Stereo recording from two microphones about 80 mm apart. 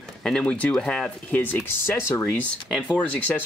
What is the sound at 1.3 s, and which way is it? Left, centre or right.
Speech, left.